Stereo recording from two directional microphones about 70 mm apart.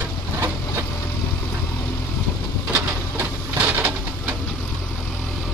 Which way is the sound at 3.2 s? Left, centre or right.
Right.